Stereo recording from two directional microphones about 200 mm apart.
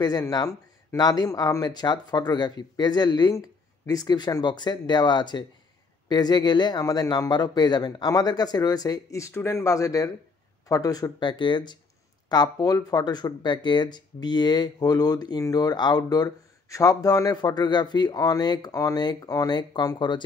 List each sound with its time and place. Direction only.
0.0 s speech: 20° left (ahead or behind)